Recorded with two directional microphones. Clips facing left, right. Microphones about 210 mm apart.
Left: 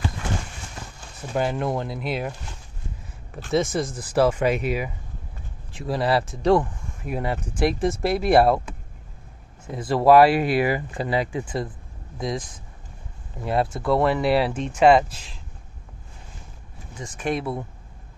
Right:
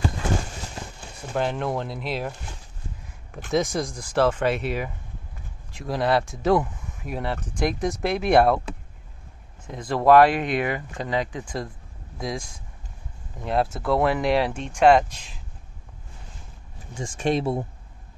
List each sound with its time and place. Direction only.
1.3 s speech: 5° left (ahead or behind)
3.5 s speech: centre (ahead or behind)
7.2 s speech: 10° left (ahead or behind)
9.7 s speech: 5° left (ahead or behind)
17.2 s speech: 25° right (ahead or behind)